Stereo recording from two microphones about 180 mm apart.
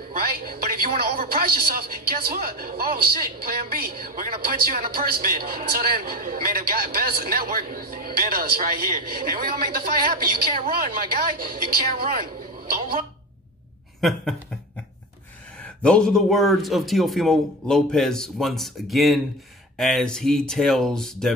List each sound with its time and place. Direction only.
0.1 s speech: 55° right (ahead or behind)
15.6 s a man's voice: 5° left (ahead or behind)